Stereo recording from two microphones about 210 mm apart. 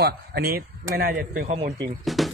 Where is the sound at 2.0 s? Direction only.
Centre (ahead or behind).